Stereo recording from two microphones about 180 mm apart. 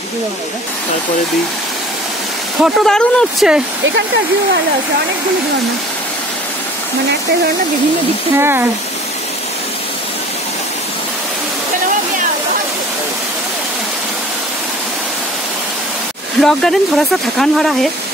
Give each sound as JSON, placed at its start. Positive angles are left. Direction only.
{"t": 2.6, "sound": "speech", "side_deg": 0}
{"t": 8.4, "sound": "speech", "side_deg": -10}
{"t": 16.3, "sound": "speech", "side_deg": 0}